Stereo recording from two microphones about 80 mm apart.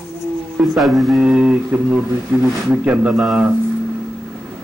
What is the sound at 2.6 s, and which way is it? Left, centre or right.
Speech, centre.